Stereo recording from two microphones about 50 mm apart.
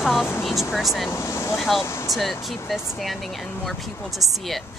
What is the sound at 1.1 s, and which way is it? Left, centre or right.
Speech, left.